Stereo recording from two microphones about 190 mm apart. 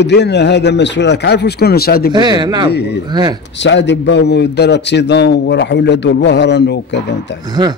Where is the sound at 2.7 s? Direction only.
60° left (ahead or behind).